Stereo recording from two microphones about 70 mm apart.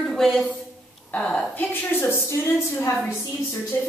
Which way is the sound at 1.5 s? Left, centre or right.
Left.